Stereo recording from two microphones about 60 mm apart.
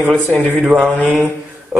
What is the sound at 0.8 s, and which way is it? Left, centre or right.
Mantra, centre.